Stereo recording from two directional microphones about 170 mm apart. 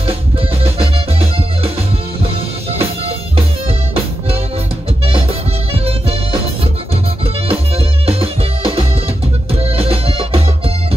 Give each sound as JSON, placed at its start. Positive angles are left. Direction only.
{"t": 0.7, "sound": "music", "side_deg": -35}
{"t": 2.8, "sound": "music", "side_deg": -35}
{"t": 5.7, "sound": "music", "side_deg": -35}
{"t": 7.4, "sound": "music", "side_deg": -35}